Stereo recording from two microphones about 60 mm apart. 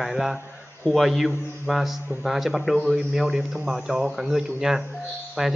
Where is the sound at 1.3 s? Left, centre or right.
Left.